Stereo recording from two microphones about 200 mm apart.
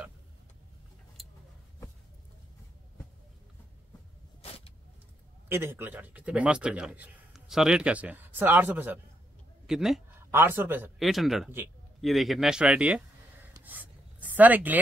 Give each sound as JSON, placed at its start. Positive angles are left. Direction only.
{"t": 4.4, "sound": "vehicle", "side_deg": 30}
{"t": 5.5, "sound": "a man's voice", "side_deg": -10}
{"t": 13.7, "sound": "a sound", "side_deg": -10}